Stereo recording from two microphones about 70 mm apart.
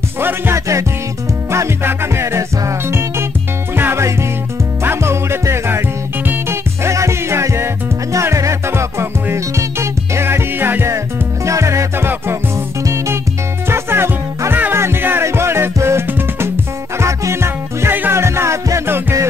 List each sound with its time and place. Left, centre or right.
0.2 s music: right
11.4 s music: right
13.7 s music: right
17.0 s music: right